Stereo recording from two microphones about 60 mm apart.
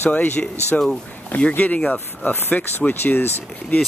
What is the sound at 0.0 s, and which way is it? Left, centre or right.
Speech, left.